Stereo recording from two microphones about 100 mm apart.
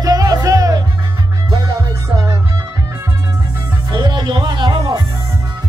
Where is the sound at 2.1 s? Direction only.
35° right (ahead or behind).